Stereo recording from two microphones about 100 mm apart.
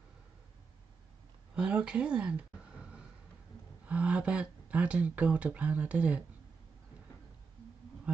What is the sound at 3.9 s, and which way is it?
Speech, 10° right (ahead or behind).